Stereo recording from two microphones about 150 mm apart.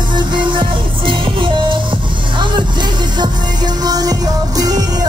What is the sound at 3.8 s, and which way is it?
Music, 25° right (ahead or behind).